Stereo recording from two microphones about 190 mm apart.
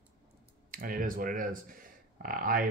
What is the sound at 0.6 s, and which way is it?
Speech, 45° right (ahead or behind).